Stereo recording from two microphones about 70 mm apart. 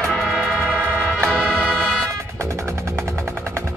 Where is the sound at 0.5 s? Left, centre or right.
Centre.